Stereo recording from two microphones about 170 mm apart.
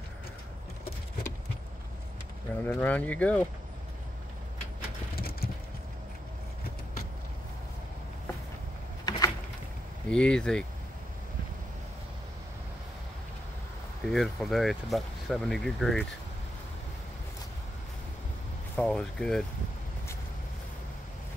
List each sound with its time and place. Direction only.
2.6 s speech: 10° left (ahead or behind)
5.1 s vehicle: 65° left (ahead or behind)
9.1 s a sound: 25° left (ahead or behind)
10.0 s speech: 5° left (ahead or behind)
14.0 s speech: centre (ahead or behind)
18.8 s speech: 5° left (ahead or behind)